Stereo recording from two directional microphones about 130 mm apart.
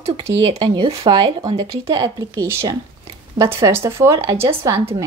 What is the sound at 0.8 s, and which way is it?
Speech, 25° right (ahead or behind).